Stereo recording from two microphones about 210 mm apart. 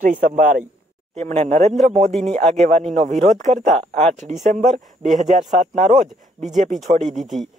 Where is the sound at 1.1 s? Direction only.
30° right (ahead or behind).